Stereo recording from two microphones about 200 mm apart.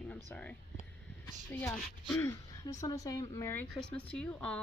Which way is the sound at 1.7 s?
5° left (ahead or behind).